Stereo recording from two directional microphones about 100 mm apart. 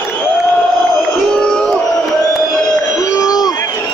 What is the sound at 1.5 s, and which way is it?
Crowd, 10° left (ahead or behind).